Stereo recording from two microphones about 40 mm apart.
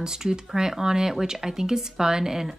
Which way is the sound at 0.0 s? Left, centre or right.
Centre.